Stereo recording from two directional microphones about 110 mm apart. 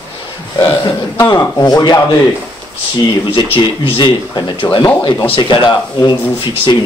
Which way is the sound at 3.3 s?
50° left (ahead or behind).